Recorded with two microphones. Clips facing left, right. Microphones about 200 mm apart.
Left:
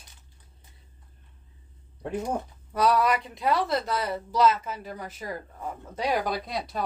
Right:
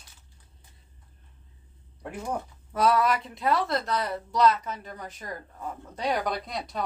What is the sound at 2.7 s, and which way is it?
Speech, centre (ahead or behind).